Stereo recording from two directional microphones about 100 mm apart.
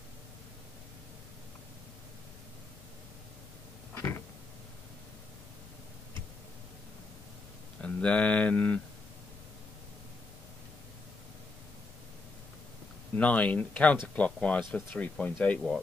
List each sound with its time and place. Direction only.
3.9 s a sound: 30° left (ahead or behind)
7.8 s speech: 10° left (ahead or behind)
13.1 s speech: 15° left (ahead or behind)